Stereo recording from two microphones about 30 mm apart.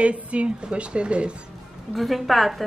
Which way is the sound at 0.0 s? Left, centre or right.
Right.